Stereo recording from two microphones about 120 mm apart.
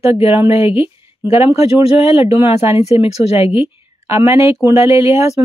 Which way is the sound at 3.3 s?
45° left (ahead or behind).